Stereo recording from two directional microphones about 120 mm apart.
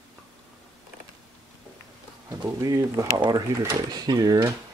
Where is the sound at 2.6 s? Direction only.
30° right (ahead or behind).